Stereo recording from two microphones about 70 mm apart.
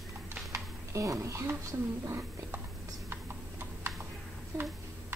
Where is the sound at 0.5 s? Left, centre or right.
Right.